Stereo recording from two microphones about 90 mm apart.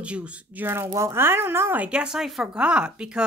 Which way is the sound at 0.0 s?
15° right (ahead or behind).